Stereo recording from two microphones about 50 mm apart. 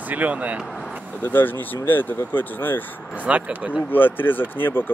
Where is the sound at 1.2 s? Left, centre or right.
Left.